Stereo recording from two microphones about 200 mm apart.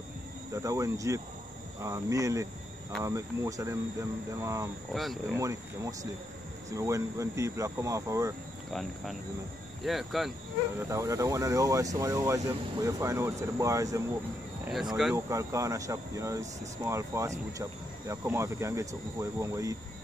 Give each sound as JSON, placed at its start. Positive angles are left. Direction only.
{"t": 0.5, "sound": "speech", "side_deg": -15}
{"t": 4.9, "sound": "speech", "side_deg": 0}
{"t": 5.3, "sound": "speech", "side_deg": -15}
{"t": 9.8, "sound": "speech", "side_deg": 0}
{"t": 10.8, "sound": "speech", "side_deg": -15}
{"t": 14.6, "sound": "a sound", "side_deg": 0}
{"t": 15.1, "sound": "speech", "side_deg": -15}